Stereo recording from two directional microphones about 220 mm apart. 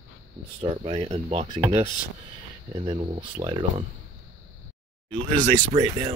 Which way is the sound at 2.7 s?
20° right (ahead or behind).